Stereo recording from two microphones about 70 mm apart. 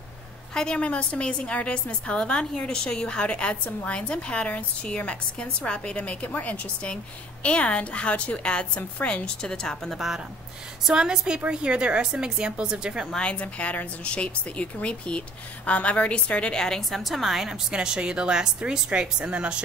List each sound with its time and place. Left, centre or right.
0.6 s a woman's voice: centre
9.9 s a woman's voice: centre
13.1 s a woman's voice: centre